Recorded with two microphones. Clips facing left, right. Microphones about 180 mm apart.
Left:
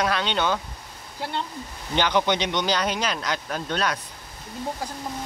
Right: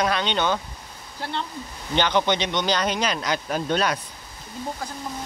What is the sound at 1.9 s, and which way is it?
Speech, 10° left (ahead or behind).